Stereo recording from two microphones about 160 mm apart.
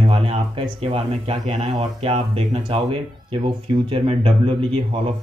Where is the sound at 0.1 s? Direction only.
35° right (ahead or behind).